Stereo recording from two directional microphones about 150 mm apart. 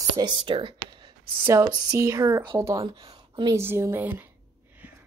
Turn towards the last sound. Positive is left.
turn(degrees=-15)  # may be behind; listen again after turning